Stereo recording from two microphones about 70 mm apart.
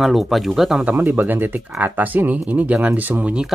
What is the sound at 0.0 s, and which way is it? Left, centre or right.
Speech, centre.